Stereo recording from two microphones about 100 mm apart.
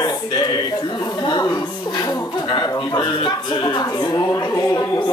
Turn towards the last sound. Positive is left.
turn(degrees=35)  # may be behind; listen again after turning